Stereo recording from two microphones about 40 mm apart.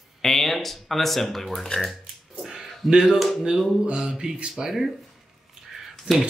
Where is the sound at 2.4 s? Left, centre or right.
Centre.